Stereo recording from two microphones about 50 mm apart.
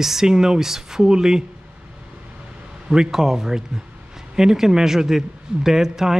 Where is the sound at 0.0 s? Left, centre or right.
Centre.